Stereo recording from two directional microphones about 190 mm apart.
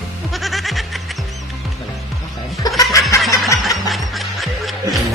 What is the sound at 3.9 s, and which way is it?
Music, centre (ahead or behind).